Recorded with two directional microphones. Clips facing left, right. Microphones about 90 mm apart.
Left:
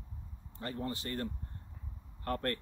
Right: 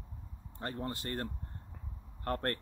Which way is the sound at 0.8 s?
50° right (ahead or behind).